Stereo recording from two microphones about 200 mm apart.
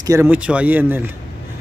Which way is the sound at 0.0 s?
15° right (ahead or behind).